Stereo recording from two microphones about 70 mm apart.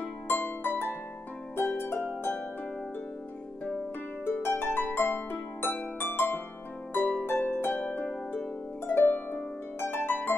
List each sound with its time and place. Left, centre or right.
0.0 s harp: left
4.4 s harp: left
7.8 s harp: left